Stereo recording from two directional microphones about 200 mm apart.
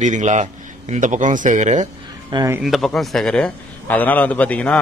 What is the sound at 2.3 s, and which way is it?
Speech, 15° right (ahead or behind).